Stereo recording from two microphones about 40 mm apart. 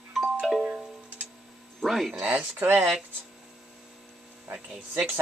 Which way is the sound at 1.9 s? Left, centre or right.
Centre.